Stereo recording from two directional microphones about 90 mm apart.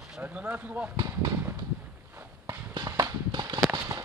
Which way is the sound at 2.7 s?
50° right (ahead or behind).